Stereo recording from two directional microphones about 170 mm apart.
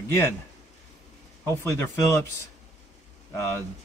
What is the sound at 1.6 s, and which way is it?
Speech, 15° left (ahead or behind).